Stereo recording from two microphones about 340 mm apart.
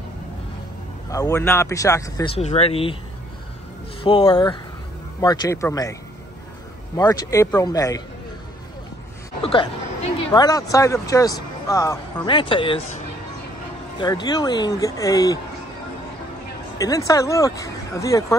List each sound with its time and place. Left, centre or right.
1.1 s speech: centre
4.0 s speech: centre
7.0 s speech: centre
9.4 s speech: centre
14.0 s speech: centre
16.7 s speech: centre